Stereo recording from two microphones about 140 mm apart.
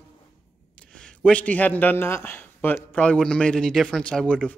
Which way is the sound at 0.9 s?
5° left (ahead or behind).